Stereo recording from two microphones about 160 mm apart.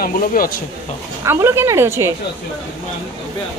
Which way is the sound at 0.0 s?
60° left (ahead or behind).